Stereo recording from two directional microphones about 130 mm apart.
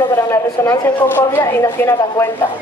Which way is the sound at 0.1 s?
20° left (ahead or behind).